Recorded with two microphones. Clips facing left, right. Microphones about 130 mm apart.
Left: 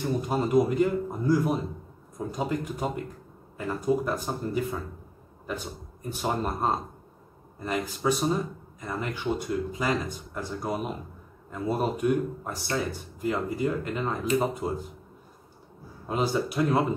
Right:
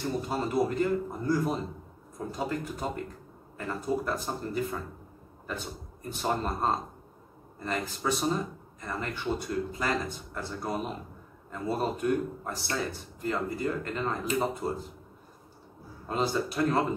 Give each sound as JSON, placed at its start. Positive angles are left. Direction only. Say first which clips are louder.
{"t": 0.2, "sound": "speech", "louder": "left 6 dB", "side_deg": 15}
{"t": 6.0, "sound": "speech", "louder": "left 1 dB", "side_deg": 10}
{"t": 16.1, "sound": "speech", "louder": "left 2 dB", "side_deg": 15}